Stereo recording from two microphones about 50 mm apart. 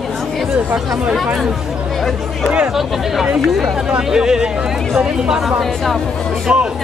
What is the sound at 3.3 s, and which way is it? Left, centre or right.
Speech, centre.